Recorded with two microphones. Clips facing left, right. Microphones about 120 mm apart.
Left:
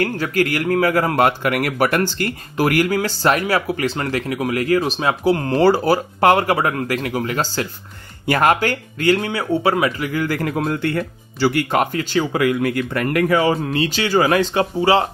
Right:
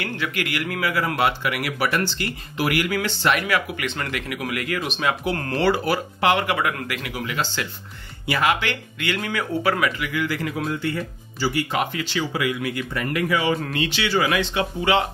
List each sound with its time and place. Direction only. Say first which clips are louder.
0.0 s a man's voice: left 8 dB; 40° left (ahead or behind)
5.6 s a man's voice: left 4 dB; 40° left (ahead or behind)